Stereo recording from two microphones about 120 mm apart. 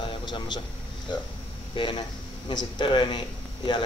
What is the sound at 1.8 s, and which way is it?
Speech, 40° left (ahead or behind).